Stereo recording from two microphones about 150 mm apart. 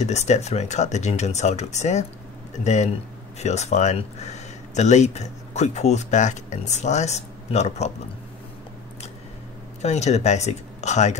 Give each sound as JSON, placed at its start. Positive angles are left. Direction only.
{"t": 0.0, "sound": "speech", "side_deg": 50}
{"t": 9.8, "sound": "speech", "side_deg": 45}